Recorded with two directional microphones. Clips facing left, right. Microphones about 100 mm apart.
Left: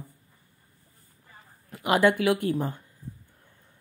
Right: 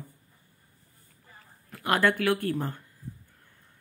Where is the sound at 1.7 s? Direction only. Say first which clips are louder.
Left 3 dB; 15° left (ahead or behind).